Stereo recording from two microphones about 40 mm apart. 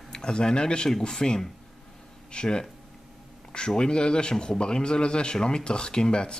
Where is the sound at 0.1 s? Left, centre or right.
Centre.